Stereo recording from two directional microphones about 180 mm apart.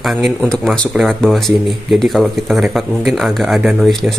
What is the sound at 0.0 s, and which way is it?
Speech, centre (ahead or behind).